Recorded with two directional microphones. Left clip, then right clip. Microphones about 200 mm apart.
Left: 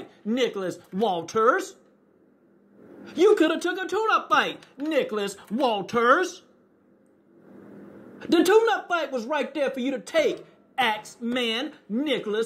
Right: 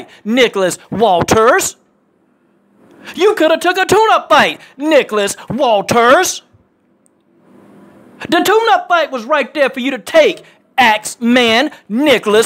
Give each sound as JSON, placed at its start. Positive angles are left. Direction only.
{"t": 0.3, "sound": "speech", "side_deg": -25}
{"t": 3.2, "sound": "speech", "side_deg": -20}
{"t": 8.2, "sound": "speech", "side_deg": -25}
{"t": 10.7, "sound": "a sound", "side_deg": -25}
{"t": 11.0, "sound": "speech", "side_deg": -40}
{"t": 11.3, "sound": "speech", "side_deg": -25}